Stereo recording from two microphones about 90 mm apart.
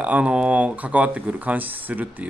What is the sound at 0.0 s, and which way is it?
A man's voice, 15° right (ahead or behind).